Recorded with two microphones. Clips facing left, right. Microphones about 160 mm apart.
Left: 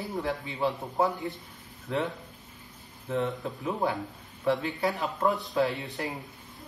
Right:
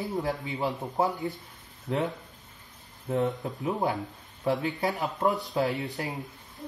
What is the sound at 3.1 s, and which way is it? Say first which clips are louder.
Speech: right 2 dB; 20° right (ahead or behind).